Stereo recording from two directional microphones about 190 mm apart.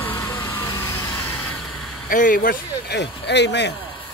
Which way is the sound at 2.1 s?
45° left (ahead or behind).